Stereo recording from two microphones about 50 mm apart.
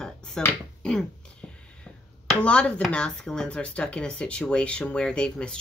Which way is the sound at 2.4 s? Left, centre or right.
Left.